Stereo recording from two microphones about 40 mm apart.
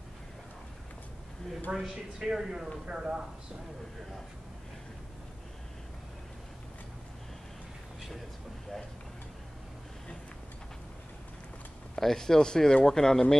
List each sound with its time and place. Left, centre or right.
1.7 s a woman's voice: right
2.1 s speech: centre
11.9 s speech: centre